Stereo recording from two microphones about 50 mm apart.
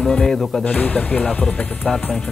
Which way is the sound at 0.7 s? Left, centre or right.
Left.